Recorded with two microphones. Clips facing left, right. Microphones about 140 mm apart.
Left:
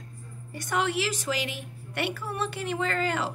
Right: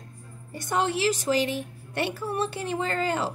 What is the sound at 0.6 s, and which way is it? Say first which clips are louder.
A woman's voice: right 2 dB; 30° right (ahead or behind).